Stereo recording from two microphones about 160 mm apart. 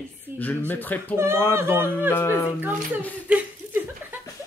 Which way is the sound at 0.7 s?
10° left (ahead or behind).